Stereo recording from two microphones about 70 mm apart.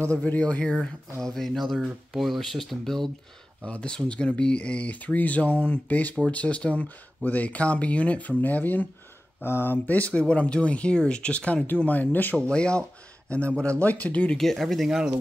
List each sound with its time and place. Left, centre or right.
0.1 s speech: centre
1.2 s speech: centre
3.6 s speech: centre
12.4 s speech: centre
14.3 s speech: centre